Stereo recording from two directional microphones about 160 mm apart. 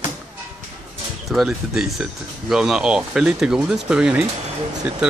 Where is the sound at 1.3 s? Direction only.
Centre (ahead or behind).